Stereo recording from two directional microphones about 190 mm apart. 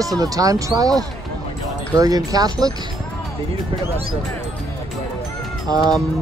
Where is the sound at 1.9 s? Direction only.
20° right (ahead or behind).